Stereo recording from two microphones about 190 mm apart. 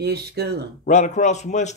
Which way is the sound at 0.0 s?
60° right (ahead or behind).